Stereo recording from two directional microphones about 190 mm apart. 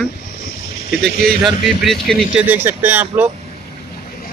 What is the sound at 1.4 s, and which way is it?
A man's voice, centre (ahead or behind).